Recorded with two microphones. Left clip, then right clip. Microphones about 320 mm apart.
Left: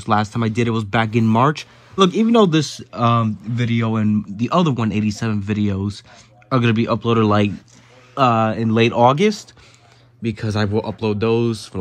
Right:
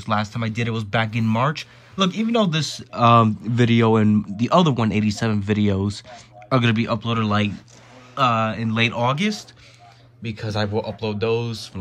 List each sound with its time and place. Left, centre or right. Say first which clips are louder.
0.0 s speech: left 5 dB; centre